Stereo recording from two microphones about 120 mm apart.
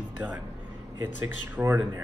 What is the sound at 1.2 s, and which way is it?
Speech, 15° right (ahead or behind).